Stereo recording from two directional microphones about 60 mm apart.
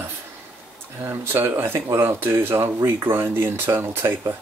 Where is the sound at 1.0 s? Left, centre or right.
Right.